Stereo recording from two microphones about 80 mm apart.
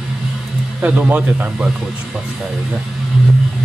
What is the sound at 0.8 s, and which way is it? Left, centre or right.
Speech, centre.